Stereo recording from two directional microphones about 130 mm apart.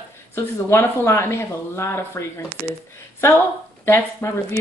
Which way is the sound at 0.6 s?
20° left (ahead or behind).